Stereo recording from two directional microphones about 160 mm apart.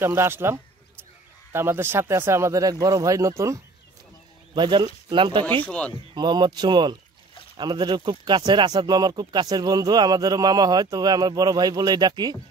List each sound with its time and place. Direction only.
0.0 s speech: 15° right (ahead or behind); by 5.4 s 30° right (ahead or behind)
5.4 s speech: 10° left (ahead or behind)
6.1 s speech: 25° right (ahead or behind)